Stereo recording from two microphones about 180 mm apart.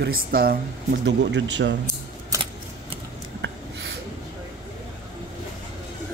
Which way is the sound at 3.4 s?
80° right.